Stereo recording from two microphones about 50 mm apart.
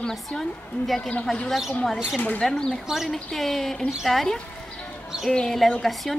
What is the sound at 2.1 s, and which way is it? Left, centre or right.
Speech, left.